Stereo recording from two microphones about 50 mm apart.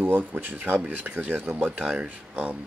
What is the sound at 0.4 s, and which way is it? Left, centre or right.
Speech, right.